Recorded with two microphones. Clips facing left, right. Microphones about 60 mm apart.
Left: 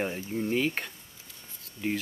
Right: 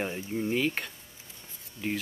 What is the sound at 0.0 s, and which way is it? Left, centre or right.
Speech, centre.